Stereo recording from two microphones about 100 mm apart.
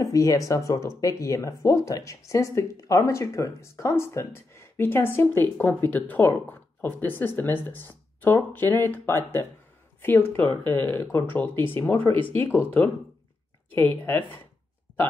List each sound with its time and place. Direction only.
0.0 s speech: 35° left (ahead or behind)